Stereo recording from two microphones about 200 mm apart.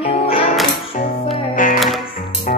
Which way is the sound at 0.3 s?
30° left (ahead or behind).